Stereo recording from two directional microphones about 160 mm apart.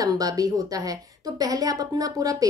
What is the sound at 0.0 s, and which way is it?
A woman's voice, 25° right (ahead or behind).